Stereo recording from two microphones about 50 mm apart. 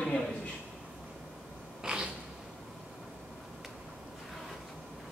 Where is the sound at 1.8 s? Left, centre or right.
Centre.